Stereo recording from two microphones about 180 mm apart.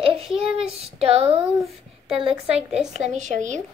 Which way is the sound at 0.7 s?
35° right (ahead or behind).